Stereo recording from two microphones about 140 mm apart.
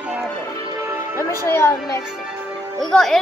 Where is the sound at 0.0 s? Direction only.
10° right (ahead or behind).